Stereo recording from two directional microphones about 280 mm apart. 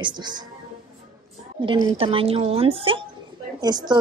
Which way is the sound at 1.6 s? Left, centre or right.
Centre.